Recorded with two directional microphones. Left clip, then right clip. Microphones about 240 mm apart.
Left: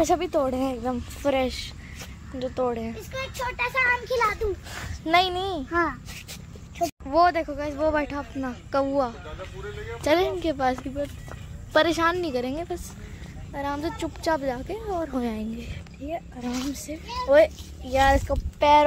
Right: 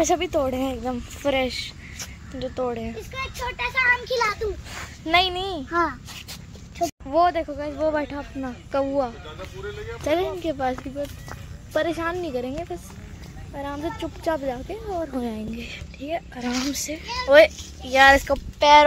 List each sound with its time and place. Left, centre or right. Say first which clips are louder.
0.0 s speech: right 1 dB; centre
3.8 s speech: right 3 dB; centre
17.0 s a child's voice: right 2 dB; right
17.3 s speech: right 4 dB; centre